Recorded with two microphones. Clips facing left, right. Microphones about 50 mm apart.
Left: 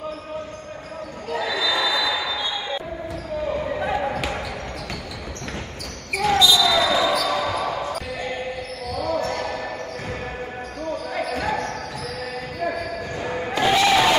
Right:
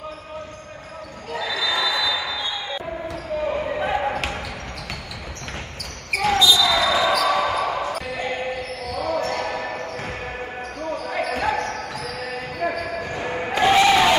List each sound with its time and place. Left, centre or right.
1.3 s basketball bounce: centre
3.4 s basketball bounce: right
6.2 s basketball bounce: centre
7.1 s basketball bounce: right
8.3 s basketball bounce: right
11.1 s basketball bounce: right
12.5 s basketball bounce: right
13.6 s crowd: centre